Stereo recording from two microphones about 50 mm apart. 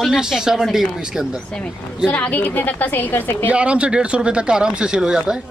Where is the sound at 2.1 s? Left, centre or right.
Left.